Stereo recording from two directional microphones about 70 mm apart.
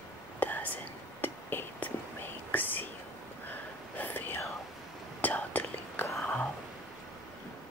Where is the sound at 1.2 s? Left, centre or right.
Left.